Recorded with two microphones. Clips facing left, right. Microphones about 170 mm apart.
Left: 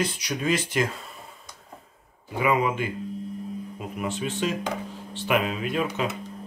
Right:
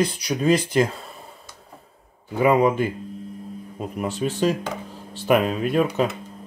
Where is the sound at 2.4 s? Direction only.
35° right (ahead or behind).